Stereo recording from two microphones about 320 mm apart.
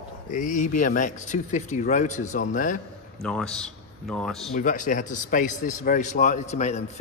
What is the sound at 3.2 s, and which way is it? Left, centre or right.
A man's voice, centre.